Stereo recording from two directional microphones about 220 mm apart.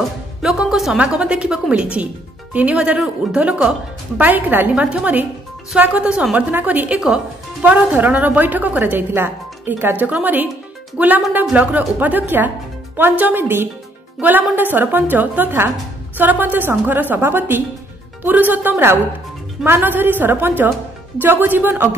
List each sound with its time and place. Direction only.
0.4 s a woman's voice: centre (ahead or behind)